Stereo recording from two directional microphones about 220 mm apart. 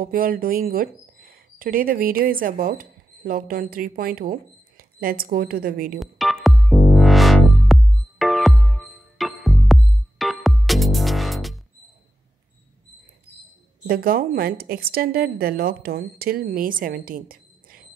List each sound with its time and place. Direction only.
0.0 s speech: 40° right (ahead or behind)
5.9 s music: centre (ahead or behind)
13.8 s a woman's voice: 40° right (ahead or behind)